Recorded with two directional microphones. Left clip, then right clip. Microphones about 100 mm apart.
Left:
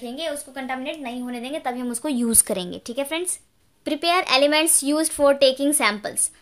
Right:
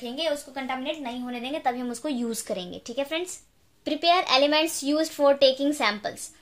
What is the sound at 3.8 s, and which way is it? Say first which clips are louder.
Speech: left 1 dB; 50° left (ahead or behind).